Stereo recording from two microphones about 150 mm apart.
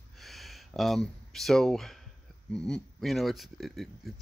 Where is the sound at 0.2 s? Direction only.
Centre (ahead or behind).